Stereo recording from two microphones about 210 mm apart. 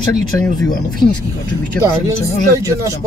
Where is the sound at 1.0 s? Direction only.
45° left (ahead or behind).